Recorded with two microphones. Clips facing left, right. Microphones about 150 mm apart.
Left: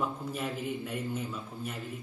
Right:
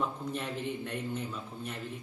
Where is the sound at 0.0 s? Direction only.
5° left (ahead or behind).